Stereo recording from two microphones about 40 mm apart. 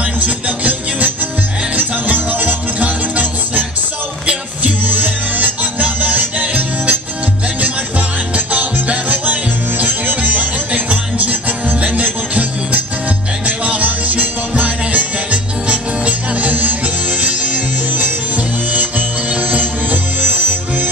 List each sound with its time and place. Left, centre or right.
0.2 s music: right
4.6 s music: right
8.5 s music: right
18.7 s music: right